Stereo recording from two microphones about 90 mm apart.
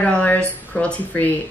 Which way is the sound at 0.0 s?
15° left (ahead or behind).